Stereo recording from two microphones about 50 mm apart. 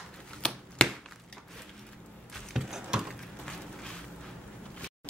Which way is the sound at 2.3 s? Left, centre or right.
Centre.